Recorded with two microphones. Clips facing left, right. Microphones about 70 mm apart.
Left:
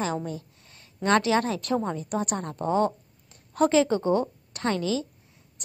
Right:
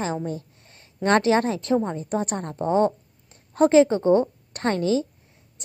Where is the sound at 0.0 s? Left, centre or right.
Right.